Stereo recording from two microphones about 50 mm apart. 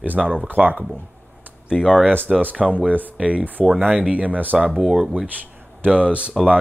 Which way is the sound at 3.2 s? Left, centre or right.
Right.